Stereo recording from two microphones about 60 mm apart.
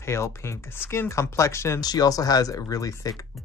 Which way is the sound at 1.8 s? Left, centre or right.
Left.